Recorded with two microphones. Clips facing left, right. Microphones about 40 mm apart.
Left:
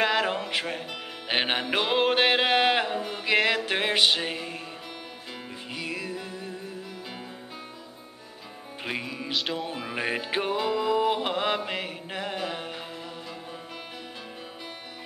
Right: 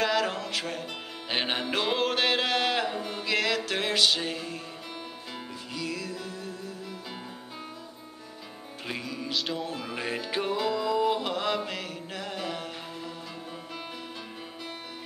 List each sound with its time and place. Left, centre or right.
0.0 s music: left
3.0 s music: centre
3.3 s music: left
5.7 s music: left
8.8 s music: left
9.3 s music: centre
9.7 s music: centre